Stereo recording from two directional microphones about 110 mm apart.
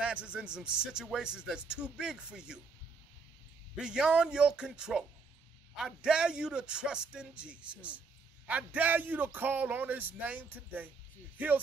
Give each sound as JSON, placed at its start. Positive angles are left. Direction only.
{"t": 0.0, "sound": "a man's voice", "side_deg": -10}
{"t": 3.7, "sound": "a man's voice", "side_deg": -10}